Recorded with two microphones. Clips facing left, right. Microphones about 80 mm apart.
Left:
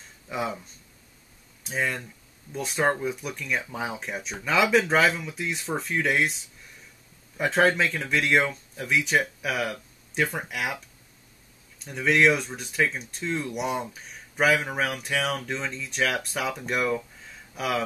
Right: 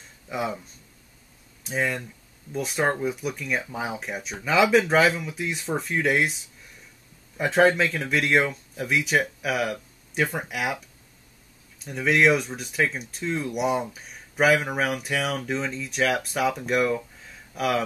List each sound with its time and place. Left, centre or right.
0.3 s speech: centre
1.6 s speech: centre
11.8 s speech: centre